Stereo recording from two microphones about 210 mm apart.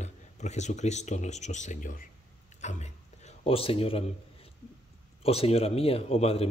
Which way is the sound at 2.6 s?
35° left (ahead or behind).